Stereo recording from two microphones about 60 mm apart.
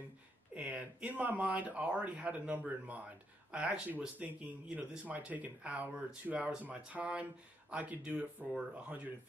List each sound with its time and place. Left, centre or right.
0.6 s speech: right